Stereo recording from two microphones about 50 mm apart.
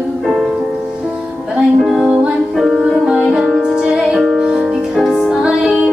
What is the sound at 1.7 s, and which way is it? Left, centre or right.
Music, centre.